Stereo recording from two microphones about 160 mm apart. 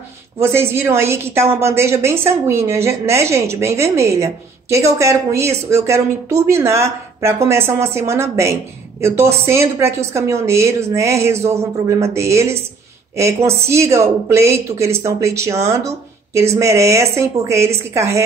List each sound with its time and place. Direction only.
0.4 s a woman's voice: 15° right (ahead or behind)